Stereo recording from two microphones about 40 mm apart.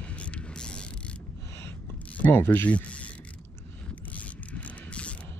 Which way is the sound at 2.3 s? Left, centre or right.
Left.